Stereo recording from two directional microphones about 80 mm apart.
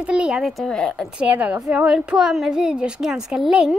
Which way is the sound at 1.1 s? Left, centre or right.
Centre.